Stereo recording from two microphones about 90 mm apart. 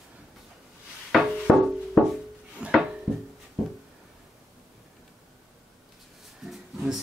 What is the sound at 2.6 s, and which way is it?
Drawer open or close, 10° right (ahead or behind).